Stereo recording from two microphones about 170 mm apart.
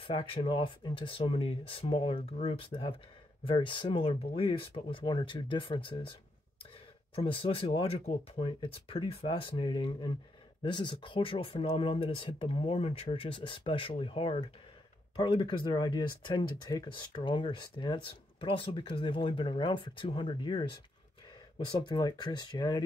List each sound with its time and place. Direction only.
0.0 s speech: 30° left (ahead or behind)
7.2 s speech: 35° left (ahead or behind)